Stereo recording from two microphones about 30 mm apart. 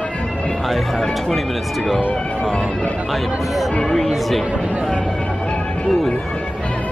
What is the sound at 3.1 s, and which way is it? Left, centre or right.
Speech, centre.